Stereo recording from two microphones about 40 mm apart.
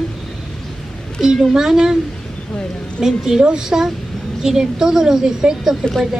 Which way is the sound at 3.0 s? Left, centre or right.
Centre.